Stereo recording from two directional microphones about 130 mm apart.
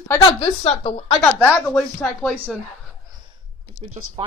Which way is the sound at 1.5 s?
15° left (ahead or behind).